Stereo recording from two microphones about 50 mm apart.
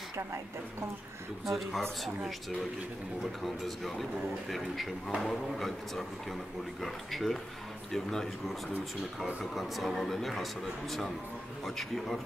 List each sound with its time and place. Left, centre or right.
1.4 s speech: centre
3.4 s speech: centre